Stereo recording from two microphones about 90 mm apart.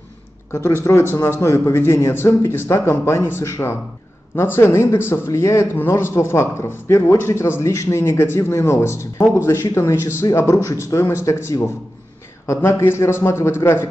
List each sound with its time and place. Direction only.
0.5 s a man's voice: 35° left (ahead or behind)